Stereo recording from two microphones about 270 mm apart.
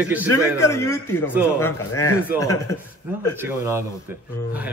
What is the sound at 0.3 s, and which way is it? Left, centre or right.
A man's voice, centre.